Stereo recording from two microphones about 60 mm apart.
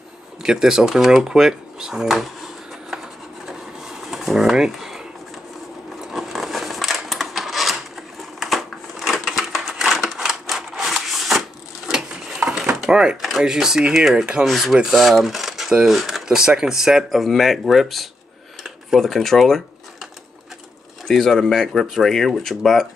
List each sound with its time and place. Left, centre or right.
0.4 s speech: centre
3.4 s a sound: centre
5.9 s rub: centre
8.2 s crushing: centre
12.8 s a sound: centre
13.4 s speech: centre
21.1 s speech: centre